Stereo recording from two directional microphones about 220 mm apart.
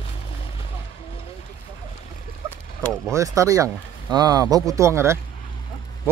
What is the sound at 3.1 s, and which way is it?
Speech, 15° right (ahead or behind).